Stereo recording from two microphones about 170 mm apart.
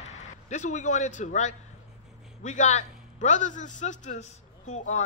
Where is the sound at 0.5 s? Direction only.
45° left (ahead or behind).